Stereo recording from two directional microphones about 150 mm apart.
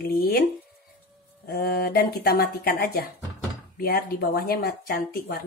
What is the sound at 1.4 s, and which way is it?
Speech, 90° left.